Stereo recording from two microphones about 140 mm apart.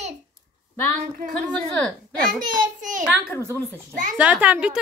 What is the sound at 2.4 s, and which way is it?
Speech, 65° right (ahead or behind).